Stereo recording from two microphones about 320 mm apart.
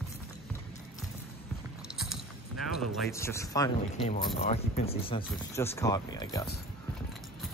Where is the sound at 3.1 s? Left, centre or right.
Centre.